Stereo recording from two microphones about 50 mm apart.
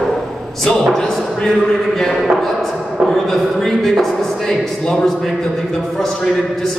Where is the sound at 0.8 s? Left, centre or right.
Centre.